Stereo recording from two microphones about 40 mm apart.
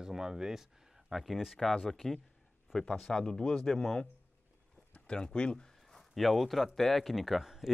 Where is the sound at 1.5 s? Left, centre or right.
Centre.